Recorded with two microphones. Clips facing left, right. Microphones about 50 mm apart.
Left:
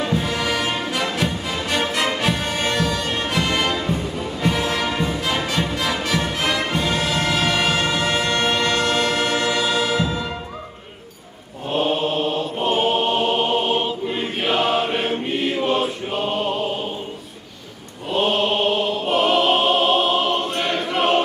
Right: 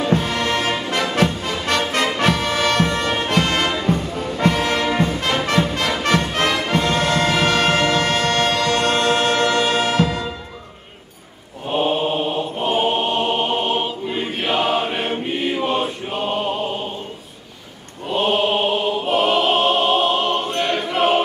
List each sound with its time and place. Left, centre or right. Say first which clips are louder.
0.1 s music: right 2 dB; right
2.5 s music: right 4 dB; right
2.8 s music: right 3 dB; right
8.3 s music: right 2 dB; centre
8.7 s music: right 2 dB; right
9.8 s music: right 2 dB; right
11.7 s mantra: right 1 dB; centre
18.1 s music: right 1 dB; centre